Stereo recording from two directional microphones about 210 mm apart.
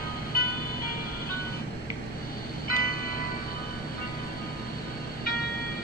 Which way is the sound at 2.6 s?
45° left (ahead or behind).